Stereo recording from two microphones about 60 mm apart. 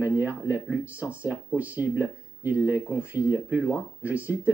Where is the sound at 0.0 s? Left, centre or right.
Right.